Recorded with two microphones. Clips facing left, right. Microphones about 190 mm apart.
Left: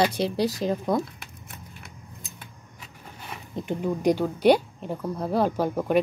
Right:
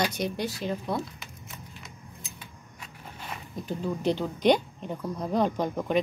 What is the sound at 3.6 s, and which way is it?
Speech, 20° left (ahead or behind).